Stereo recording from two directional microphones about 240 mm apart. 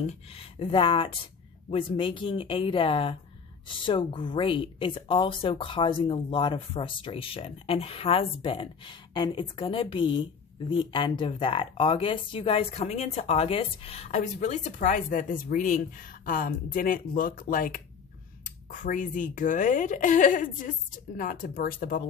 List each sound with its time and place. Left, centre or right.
0.0 s speech: left